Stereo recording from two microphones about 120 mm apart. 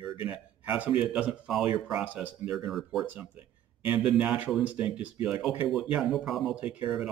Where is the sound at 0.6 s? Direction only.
10° right (ahead or behind).